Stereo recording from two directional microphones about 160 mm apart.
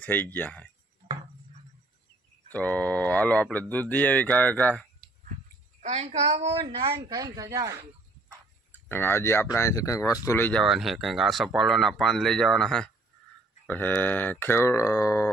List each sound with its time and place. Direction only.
0.0 s speech: 10° left (ahead or behind)
2.5 s speech: 10° left (ahead or behind)
5.8 s a child's voice: 40° right (ahead or behind); by 7.8 s 20° right (ahead or behind)
8.8 s speech: 15° left (ahead or behind)
10.6 s speech: centre (ahead or behind); by 15.2 s 20° left (ahead or behind)